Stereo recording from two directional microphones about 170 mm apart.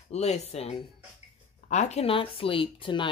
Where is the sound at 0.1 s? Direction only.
40° left (ahead or behind).